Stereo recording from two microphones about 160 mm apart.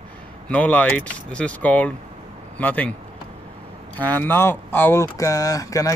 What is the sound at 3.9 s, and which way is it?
Speech, 10° left (ahead or behind).